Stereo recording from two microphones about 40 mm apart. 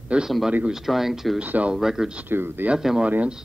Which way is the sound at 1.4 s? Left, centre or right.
Right.